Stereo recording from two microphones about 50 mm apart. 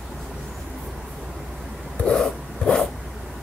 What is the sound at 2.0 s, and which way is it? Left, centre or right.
Zipper, centre.